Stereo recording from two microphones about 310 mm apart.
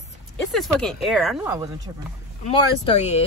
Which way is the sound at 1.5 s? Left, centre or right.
Centre.